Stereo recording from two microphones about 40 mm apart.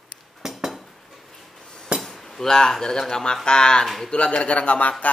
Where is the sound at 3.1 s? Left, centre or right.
Centre.